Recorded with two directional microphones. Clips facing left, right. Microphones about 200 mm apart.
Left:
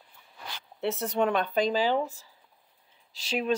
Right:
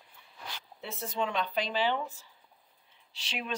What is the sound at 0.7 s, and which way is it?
Speech, 75° left (ahead or behind).